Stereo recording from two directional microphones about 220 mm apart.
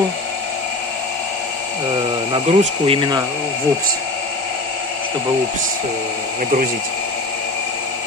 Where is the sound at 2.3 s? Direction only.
25° right (ahead or behind).